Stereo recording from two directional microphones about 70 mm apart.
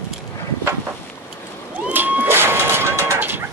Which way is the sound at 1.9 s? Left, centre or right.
Right.